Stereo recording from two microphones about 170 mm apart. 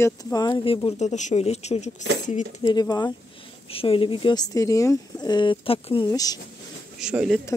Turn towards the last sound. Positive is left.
turn(degrees=-5)  # may be behind; listen again after turning